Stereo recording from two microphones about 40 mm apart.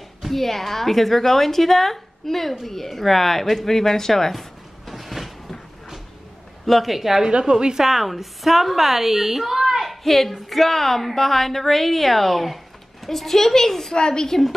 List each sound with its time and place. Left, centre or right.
0.2 s a woman's voice: centre
6.6 s a woman's voice: centre
7.2 s a woman's voice: right; by 13.9 s centre
13.9 s a woman's voice: left